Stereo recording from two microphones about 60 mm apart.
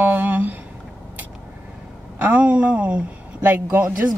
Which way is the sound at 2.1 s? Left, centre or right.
Right.